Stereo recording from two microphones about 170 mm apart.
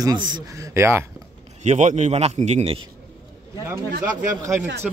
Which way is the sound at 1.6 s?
45° right (ahead or behind).